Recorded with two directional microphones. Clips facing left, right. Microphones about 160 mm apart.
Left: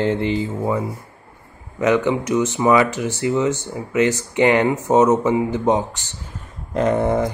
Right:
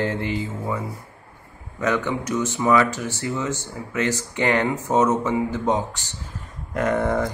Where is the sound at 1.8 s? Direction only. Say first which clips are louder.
Left 6 dB; 20° left (ahead or behind).